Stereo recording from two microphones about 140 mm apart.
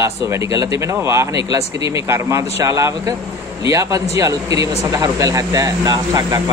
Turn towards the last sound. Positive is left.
turn(degrees=-25)  # may be behind; listen again after turning